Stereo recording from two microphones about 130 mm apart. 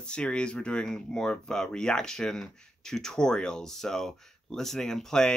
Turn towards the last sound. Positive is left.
turn(degrees=5)  # may be behind; listen again after turning